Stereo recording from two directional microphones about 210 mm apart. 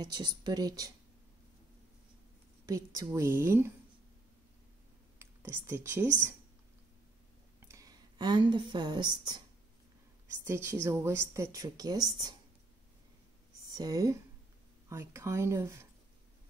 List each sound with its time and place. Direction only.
0.0 s speech: 20° right (ahead or behind)
2.6 s a woman's voice: 15° right (ahead or behind)
5.2 s speech: 10° right (ahead or behind)
7.6 s a woman's voice: 15° right (ahead or behind)
10.4 s a woman's voice: 10° right (ahead or behind)
13.7 s a woman's voice: 15° right (ahead or behind)